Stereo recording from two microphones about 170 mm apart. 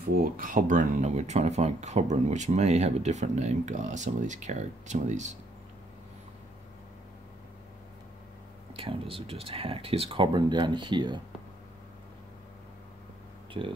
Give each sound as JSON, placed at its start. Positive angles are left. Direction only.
{"t": 0.1, "sound": "speech", "side_deg": -55}
{"t": 8.7, "sound": "speech", "side_deg": -30}
{"t": 13.5, "sound": "speech", "side_deg": -30}